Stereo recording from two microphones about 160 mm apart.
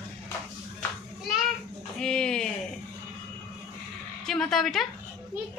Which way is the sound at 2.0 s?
5° left (ahead or behind).